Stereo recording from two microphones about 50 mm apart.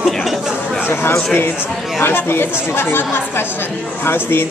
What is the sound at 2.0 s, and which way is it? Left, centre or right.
Speech, left.